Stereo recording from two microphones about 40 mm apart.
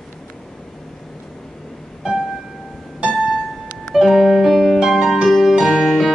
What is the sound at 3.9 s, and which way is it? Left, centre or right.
Music, centre.